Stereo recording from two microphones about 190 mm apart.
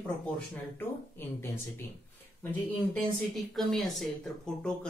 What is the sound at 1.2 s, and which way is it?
Speech, 10° left (ahead or behind).